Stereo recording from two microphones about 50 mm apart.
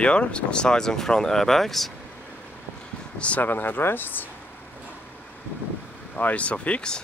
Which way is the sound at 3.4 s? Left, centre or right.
Left.